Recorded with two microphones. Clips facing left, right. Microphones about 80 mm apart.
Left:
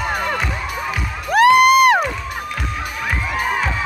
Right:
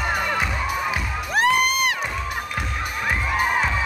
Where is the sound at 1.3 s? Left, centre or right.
Left.